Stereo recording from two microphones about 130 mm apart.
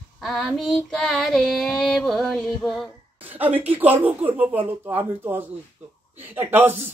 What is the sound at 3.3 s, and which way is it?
Speech, 15° right (ahead or behind).